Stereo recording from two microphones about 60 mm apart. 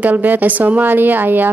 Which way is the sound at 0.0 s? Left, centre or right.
Right.